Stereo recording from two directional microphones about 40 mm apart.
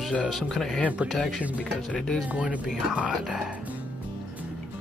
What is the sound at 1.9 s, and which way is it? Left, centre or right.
Speech, centre.